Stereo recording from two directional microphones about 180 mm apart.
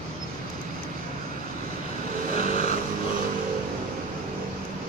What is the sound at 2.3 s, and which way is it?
Vehicle, 50° right (ahead or behind).